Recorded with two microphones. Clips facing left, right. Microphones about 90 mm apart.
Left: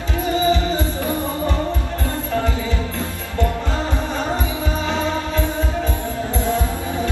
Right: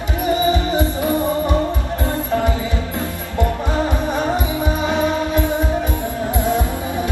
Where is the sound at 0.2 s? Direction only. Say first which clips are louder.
Right 1 dB; 15° right (ahead or behind).